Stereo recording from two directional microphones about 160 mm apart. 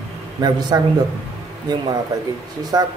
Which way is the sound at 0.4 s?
25° right (ahead or behind).